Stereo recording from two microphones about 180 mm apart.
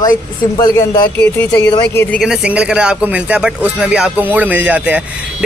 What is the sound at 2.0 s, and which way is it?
A man's voice, centre (ahead or behind).